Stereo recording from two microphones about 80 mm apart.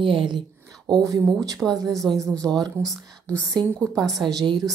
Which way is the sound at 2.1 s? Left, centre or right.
Centre.